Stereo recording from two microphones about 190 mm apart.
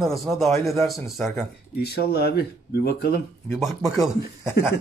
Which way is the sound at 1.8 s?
60° left (ahead or behind).